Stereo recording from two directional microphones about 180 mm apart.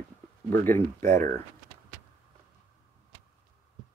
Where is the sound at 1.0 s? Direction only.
45° right (ahead or behind).